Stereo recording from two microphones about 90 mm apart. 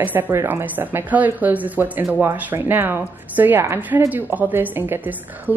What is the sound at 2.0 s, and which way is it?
A woman's voice, 30° right (ahead or behind).